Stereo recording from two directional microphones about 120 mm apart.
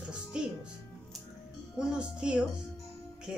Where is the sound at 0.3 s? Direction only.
5° right (ahead or behind).